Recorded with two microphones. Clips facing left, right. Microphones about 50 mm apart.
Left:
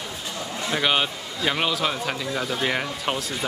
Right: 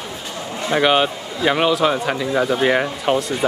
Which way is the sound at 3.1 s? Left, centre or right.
Centre.